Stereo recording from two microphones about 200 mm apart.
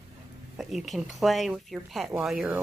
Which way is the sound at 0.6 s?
Centre (ahead or behind).